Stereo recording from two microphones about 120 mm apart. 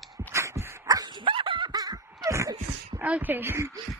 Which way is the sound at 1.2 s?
45° right (ahead or behind).